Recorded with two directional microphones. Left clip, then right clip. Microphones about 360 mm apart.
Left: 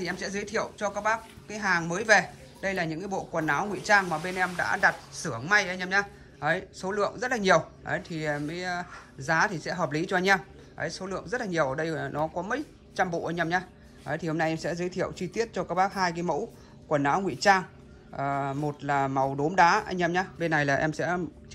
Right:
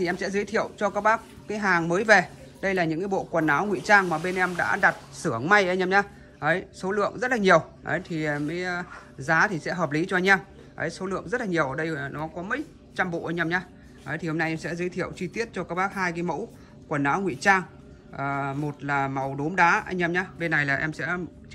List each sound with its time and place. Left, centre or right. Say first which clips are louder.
0.0 s a woman's voice: right 6 dB; centre